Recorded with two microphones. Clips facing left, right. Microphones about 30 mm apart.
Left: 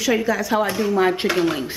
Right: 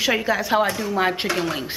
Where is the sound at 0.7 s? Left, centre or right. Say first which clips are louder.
Left 3 dB; centre.